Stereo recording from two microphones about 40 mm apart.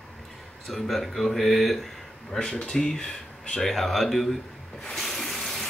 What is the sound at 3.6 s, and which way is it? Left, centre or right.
Speech, centre.